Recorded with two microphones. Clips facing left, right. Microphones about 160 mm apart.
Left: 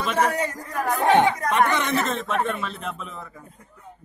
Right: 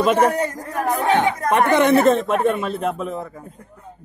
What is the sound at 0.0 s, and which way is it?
A man's voice, 50° right (ahead or behind).